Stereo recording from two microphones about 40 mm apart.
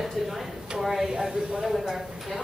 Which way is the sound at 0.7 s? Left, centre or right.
Centre.